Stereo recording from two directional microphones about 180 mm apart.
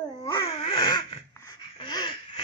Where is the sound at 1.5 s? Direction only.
25° left (ahead or behind).